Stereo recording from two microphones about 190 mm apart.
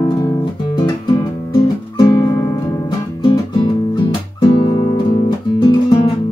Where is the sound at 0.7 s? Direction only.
20° left (ahead or behind).